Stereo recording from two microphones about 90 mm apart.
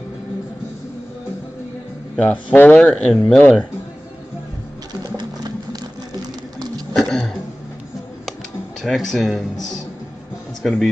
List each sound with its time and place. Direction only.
2.1 s speech: 15° left (ahead or behind)
2.7 s speech: 5° left (ahead or behind)
5.0 s sewing machine: 50° right (ahead or behind)
6.9 s a sound: 5° left (ahead or behind)
8.8 s speech: centre (ahead or behind)